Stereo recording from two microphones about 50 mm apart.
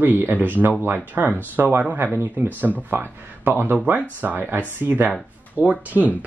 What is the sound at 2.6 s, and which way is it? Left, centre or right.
Speech, right.